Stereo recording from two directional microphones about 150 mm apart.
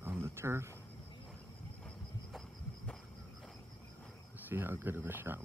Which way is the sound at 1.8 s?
5° left (ahead or behind).